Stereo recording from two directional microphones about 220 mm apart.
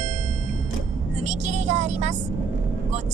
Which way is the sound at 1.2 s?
30° right (ahead or behind).